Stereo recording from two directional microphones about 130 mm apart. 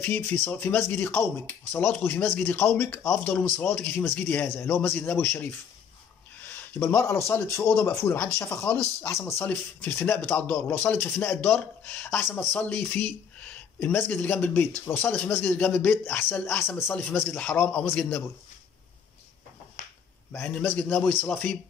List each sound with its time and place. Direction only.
0.0 s speech: 15° left (ahead or behind)
6.5 s speech: 15° left (ahead or behind)
20.3 s speech: 15° left (ahead or behind)